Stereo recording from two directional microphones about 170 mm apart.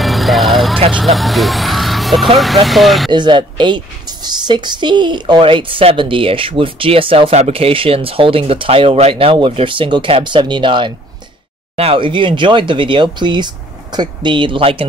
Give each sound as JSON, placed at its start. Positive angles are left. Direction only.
{"t": 0.0, "sound": "vehicle", "side_deg": 0}
{"t": 0.9, "sound": "speech", "side_deg": 0}
{"t": 3.1, "sound": "speech", "side_deg": -25}